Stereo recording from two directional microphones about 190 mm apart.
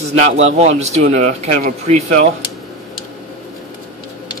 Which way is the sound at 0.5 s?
35° right (ahead or behind).